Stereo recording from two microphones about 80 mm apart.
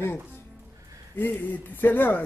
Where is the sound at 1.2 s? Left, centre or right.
Left.